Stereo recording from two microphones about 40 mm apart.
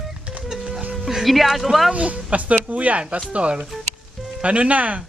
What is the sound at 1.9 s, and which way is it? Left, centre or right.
Speech, right.